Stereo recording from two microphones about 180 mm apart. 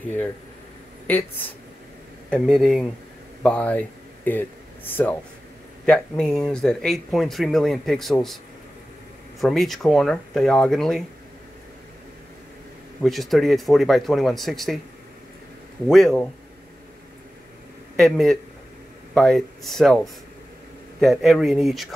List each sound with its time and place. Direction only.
2.2 s speech: 5° left (ahead or behind)
9.4 s speech: centre (ahead or behind)
13.0 s speech: centre (ahead or behind)
15.9 s speech: centre (ahead or behind)
17.9 s speech: centre (ahead or behind)
21.0 s speech: centre (ahead or behind)